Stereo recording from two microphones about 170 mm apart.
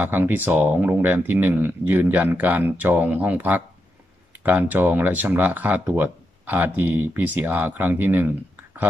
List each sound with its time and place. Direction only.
0.0 s speech: 10° right (ahead or behind)